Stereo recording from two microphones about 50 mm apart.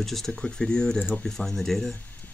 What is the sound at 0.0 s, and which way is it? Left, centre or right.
Speech, centre.